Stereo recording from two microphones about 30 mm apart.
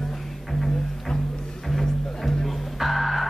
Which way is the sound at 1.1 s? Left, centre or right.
Left.